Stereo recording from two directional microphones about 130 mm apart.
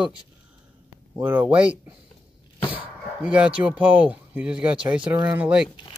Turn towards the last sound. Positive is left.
turn(degrees=-10)  # may be behind; listen again after turning